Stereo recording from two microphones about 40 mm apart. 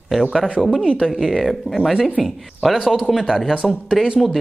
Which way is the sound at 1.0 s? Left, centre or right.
Centre.